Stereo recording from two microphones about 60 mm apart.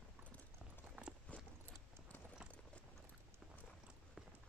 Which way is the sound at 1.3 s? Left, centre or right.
Left.